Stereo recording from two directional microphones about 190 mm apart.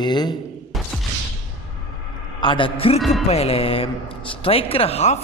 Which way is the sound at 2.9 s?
Centre (ahead or behind).